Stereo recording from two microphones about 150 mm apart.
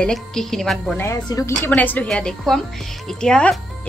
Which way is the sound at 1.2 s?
20° left (ahead or behind).